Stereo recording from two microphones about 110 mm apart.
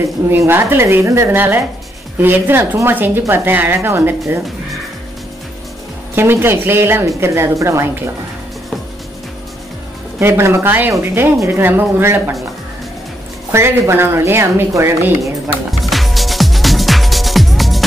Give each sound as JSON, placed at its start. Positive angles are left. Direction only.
{"t": 0.0, "sound": "speech", "side_deg": -25}
{"t": 6.1, "sound": "speech", "side_deg": -20}
{"t": 10.1, "sound": "speech", "side_deg": -25}
{"t": 13.5, "sound": "speech", "side_deg": -25}
{"t": 15.8, "sound": "music", "side_deg": 0}